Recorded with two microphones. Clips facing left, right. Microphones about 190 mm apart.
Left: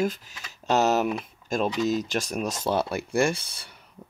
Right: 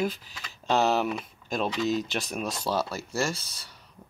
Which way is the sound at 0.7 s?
40° left (ahead or behind).